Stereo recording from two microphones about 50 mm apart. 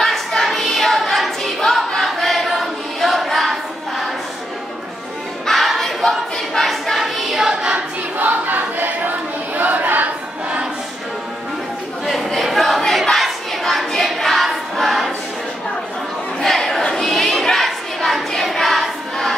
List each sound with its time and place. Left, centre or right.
0.0 s choir: centre
5.5 s choir: centre
8.2 s choir: right
12.1 s a sound: centre
13.0 s crowd: centre
16.3 s a sound: centre